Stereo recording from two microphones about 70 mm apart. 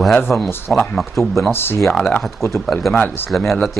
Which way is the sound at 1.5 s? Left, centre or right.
Left.